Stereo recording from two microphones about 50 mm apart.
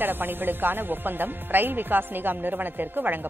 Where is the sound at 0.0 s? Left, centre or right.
Right.